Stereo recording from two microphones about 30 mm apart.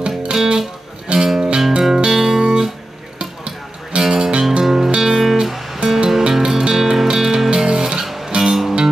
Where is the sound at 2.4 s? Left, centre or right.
Right.